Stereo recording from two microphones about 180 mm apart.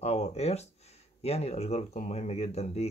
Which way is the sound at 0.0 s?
35° left (ahead or behind).